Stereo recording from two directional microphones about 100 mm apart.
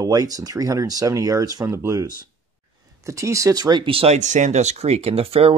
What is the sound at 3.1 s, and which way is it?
Speech, 30° right (ahead or behind).